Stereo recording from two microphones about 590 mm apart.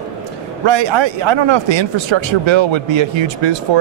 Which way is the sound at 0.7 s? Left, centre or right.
Right.